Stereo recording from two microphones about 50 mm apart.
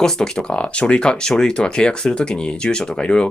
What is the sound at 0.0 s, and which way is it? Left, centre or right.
Speech, centre.